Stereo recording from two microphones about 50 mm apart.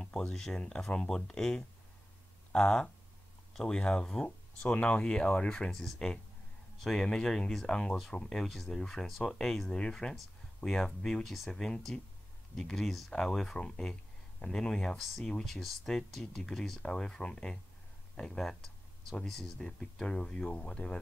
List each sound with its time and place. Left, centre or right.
0.0 s speech: centre
5.7 s a man's voice: centre
19.8 s speech: centre